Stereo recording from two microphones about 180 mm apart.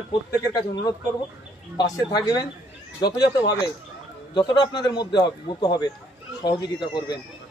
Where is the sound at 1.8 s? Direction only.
20° left (ahead or behind).